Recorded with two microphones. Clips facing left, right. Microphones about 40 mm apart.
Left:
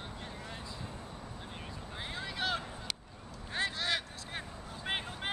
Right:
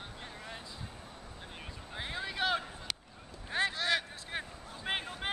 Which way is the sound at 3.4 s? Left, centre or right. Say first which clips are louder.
Right 3 dB; centre.